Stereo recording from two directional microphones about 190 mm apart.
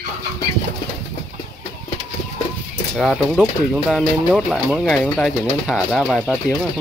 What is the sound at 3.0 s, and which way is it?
Speech, centre (ahead or behind).